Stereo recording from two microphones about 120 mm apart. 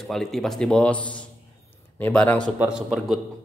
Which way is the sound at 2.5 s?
5° right (ahead or behind).